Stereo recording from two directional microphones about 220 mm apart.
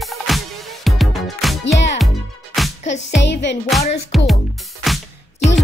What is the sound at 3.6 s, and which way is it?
Speech, centre (ahead or behind).